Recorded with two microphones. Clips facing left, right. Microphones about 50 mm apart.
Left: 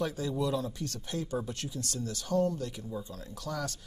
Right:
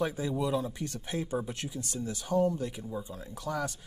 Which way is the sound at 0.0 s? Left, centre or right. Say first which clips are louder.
Right 1 dB; right.